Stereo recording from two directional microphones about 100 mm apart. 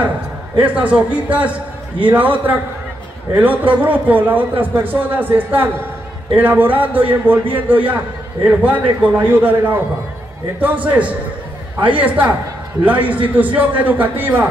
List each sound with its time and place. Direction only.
0.6 s a man's voice: 15° right (ahead or behind)